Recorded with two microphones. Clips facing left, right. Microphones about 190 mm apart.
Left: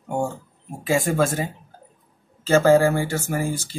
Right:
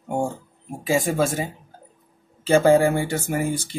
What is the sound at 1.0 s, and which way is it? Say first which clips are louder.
Speech: left 1 dB; 10° right (ahead or behind).